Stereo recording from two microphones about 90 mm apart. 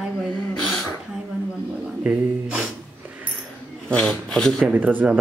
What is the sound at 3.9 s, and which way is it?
Speech, 10° left (ahead or behind).